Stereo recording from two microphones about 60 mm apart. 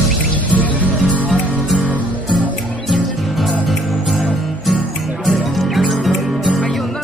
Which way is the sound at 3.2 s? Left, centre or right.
Centre.